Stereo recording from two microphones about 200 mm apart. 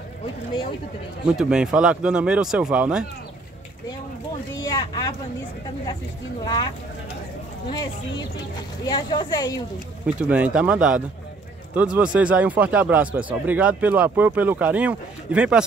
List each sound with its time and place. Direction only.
1.2 s speech: 5° right (ahead or behind)
4.6 s vehicle: 20° left (ahead or behind)
6.4 s speech: 20° left (ahead or behind)
7.7 s speech: 25° left (ahead or behind)
10.0 s speech: 5° right (ahead or behind)